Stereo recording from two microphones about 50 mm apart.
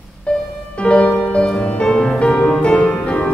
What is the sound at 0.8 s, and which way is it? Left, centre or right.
Music, left.